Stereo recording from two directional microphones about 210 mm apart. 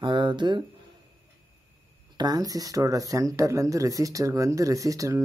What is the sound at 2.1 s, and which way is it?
Speech, 20° right (ahead or behind).